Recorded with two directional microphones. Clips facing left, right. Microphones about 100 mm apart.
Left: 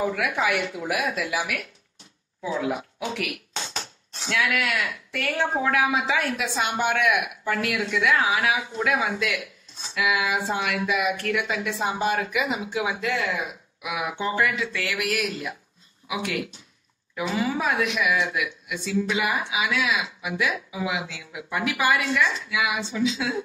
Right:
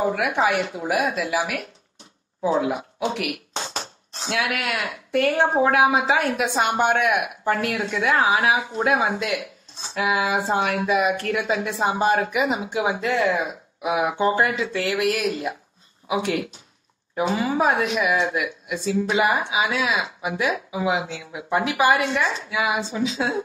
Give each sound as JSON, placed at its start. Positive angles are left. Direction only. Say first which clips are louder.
{"t": 0.1, "sound": "speech", "louder": "right 4 dB", "side_deg": -35}